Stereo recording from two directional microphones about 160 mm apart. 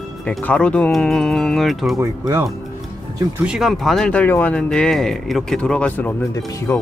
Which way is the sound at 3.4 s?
5° right (ahead or behind).